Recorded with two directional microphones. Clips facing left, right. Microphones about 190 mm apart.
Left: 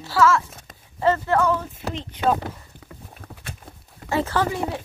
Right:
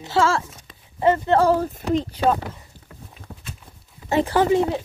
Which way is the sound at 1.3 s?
35° right (ahead or behind).